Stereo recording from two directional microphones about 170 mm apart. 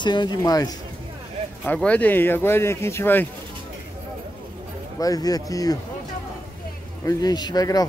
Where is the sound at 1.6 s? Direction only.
5° left (ahead or behind).